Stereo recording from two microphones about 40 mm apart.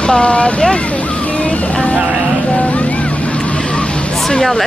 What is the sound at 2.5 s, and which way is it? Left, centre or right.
Boat, left.